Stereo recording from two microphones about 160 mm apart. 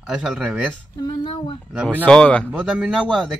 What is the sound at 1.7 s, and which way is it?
Speech, 5° right (ahead or behind).